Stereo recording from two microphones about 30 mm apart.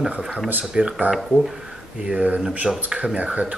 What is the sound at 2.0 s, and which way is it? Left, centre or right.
Speech, right.